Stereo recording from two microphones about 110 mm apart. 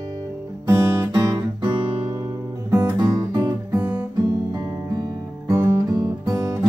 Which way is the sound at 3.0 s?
35° right (ahead or behind).